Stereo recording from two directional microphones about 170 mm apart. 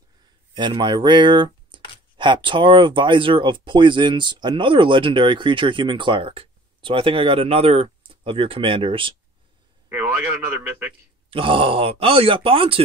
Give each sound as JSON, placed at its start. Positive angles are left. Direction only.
{"t": 0.6, "sound": "speech", "side_deg": -25}
{"t": 9.8, "sound": "speech", "side_deg": -10}
{"t": 11.2, "sound": "speech", "side_deg": -30}